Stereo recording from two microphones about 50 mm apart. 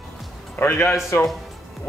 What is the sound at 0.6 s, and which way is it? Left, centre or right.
Speech, left.